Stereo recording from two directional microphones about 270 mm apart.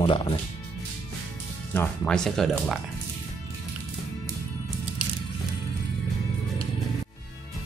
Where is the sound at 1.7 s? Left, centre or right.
Centre.